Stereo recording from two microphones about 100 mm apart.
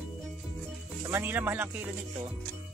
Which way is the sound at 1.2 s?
20° right (ahead or behind).